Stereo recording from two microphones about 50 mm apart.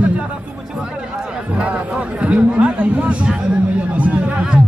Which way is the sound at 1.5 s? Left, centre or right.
Centre.